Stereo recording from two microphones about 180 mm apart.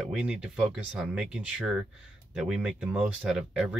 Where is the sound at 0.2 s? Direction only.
5° right (ahead or behind).